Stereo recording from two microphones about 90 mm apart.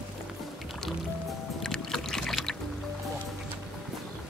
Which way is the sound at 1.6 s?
5° left (ahead or behind).